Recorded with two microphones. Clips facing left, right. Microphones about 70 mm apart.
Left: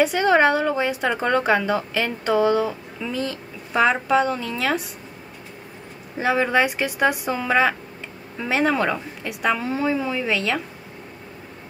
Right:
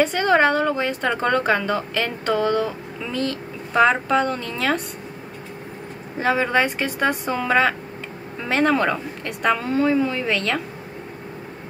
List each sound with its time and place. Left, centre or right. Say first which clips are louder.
0.0 s a woman's voice: even; centre
6.1 s a woman's voice: even; centre